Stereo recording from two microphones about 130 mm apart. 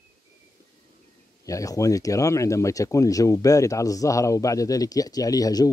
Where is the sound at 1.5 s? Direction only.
25° left (ahead or behind).